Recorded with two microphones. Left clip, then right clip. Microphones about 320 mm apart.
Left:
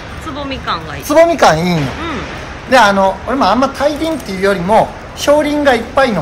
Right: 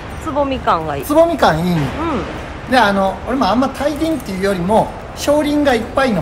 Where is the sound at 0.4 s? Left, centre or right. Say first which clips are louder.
Right 5 dB; centre.